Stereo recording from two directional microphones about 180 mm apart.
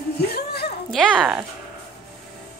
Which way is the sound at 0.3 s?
60° left (ahead or behind).